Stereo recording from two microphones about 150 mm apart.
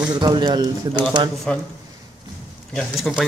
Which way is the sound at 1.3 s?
Centre (ahead or behind).